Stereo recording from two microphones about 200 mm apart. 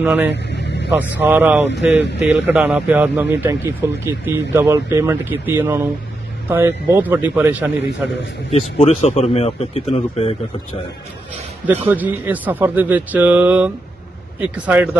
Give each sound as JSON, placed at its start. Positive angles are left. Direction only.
{"t": 0.0, "sound": "speech", "side_deg": -5}
{"t": 0.3, "sound": "vehicle", "side_deg": 60}
{"t": 1.1, "sound": "speech", "side_deg": -10}
{"t": 8.5, "sound": "speech", "side_deg": 30}
{"t": 11.6, "sound": "speech", "side_deg": -10}